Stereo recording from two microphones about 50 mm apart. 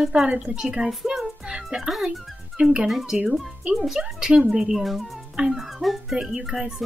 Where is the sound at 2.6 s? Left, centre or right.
Centre.